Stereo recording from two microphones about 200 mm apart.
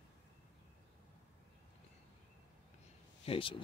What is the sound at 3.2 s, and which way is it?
Speech, 25° left (ahead or behind).